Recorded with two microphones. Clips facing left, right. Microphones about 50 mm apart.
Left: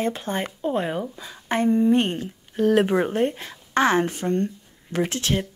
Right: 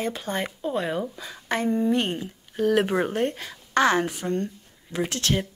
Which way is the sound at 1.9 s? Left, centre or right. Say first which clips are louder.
Left 4 dB; left.